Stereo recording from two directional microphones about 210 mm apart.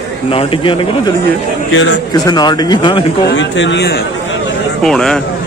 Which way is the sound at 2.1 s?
20° left (ahead or behind).